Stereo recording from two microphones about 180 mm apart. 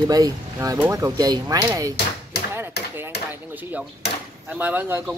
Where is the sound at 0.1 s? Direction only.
20° right (ahead or behind).